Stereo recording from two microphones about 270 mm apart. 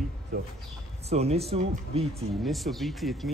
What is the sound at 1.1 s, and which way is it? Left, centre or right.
Speech, right.